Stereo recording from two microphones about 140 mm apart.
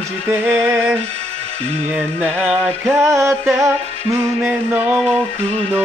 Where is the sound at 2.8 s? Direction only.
20° right (ahead or behind).